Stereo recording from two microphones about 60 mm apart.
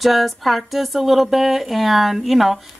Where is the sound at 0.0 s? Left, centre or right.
Centre.